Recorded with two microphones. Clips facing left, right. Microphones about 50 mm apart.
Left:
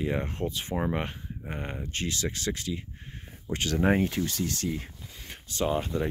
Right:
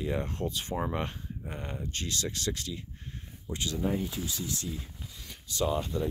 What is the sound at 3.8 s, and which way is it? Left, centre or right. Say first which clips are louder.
Speech: left 8 dB; left.